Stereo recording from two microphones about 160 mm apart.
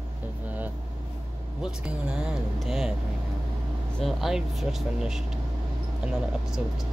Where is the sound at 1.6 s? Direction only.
5° right (ahead or behind).